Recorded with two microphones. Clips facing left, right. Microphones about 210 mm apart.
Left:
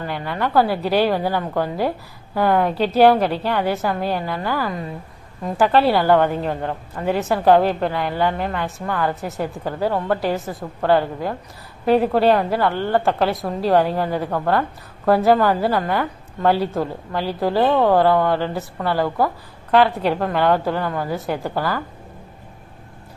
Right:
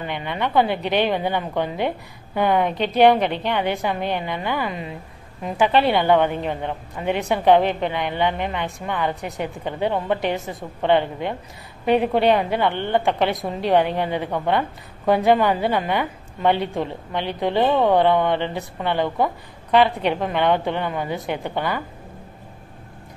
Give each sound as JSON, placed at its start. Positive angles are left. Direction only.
{"t": 0.3, "sound": "a woman's voice", "side_deg": 5}
{"t": 5.6, "sound": "a woman's voice", "side_deg": 5}
{"t": 9.9, "sound": "a woman's voice", "side_deg": -20}
{"t": 10.3, "sound": "a woman's voice", "side_deg": 0}